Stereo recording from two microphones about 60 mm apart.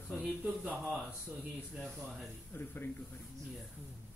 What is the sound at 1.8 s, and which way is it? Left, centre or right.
Speech, centre.